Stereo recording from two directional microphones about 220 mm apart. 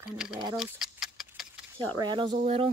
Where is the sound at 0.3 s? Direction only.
20° right (ahead or behind).